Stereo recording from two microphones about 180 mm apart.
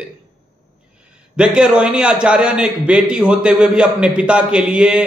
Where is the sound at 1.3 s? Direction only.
5° right (ahead or behind).